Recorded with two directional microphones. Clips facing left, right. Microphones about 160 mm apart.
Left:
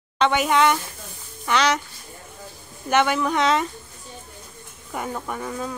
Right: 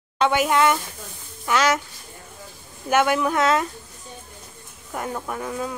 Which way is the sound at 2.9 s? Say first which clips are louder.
Right 1 dB; 5° right (ahead or behind).